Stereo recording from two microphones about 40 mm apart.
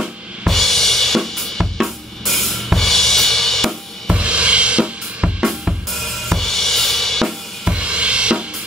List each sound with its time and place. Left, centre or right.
0.5 s drum kit: centre
4.1 s drum kit: right
5.4 s drum kit: centre
5.9 s drum kit: centre
7.6 s drum kit: right